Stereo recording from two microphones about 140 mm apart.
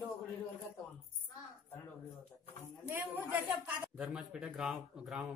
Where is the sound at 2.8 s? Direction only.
15° right (ahead or behind).